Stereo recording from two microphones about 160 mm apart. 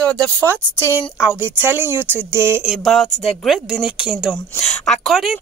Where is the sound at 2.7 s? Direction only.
Centre (ahead or behind).